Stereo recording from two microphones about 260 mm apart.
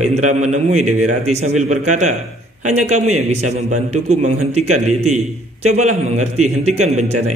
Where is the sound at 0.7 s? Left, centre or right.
Right.